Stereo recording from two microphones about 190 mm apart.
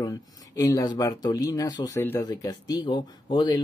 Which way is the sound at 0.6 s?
20° left (ahead or behind).